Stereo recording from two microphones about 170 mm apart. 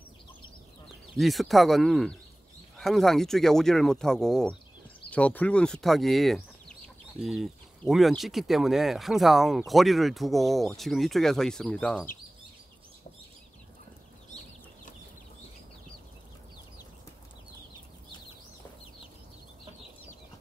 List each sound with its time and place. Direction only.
1.1 s speech: centre (ahead or behind)